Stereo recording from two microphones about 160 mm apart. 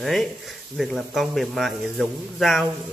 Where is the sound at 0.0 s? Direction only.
Centre (ahead or behind).